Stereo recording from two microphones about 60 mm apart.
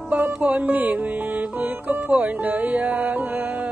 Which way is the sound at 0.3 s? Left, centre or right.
Right.